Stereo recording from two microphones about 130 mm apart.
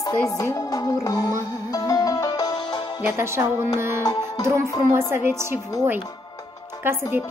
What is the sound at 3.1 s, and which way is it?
Music, 20° right (ahead or behind).